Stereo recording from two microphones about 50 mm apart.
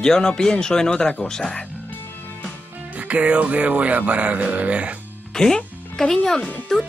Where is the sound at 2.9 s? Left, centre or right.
Right.